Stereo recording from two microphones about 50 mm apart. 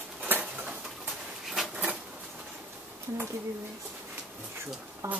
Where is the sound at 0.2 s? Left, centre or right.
Right.